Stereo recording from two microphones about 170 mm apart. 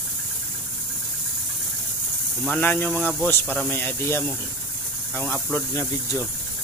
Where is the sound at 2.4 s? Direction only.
10° left (ahead or behind).